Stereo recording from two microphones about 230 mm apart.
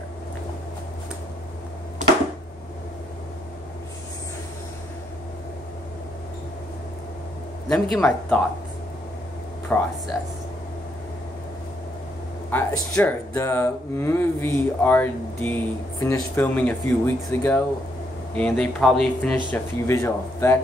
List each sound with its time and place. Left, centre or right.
7.6 s speech: centre
9.7 s speech: centre
12.5 s speech: centre